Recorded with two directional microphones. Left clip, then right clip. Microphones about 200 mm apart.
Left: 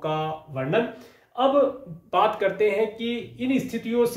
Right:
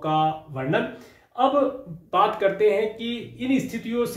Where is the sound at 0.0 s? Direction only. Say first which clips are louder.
Right 5 dB; 25° left (ahead or behind).